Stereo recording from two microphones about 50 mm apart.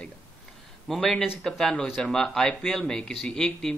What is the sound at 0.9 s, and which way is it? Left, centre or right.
A man's voice, centre.